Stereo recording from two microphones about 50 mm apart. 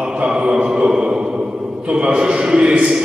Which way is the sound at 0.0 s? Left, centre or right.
Centre.